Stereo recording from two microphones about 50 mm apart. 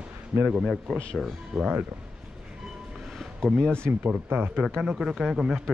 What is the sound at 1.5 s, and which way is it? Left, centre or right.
Speech, right.